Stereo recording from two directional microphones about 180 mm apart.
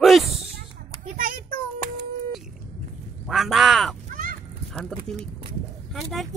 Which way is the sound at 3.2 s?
Centre (ahead or behind).